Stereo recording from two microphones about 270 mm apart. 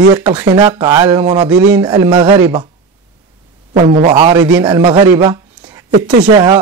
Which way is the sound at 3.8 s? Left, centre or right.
Right.